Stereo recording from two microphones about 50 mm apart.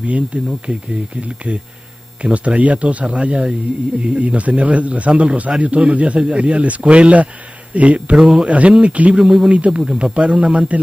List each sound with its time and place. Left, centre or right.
0.0 s a man's voice: right
2.2 s a man's voice: right
9.2 s a man's voice: centre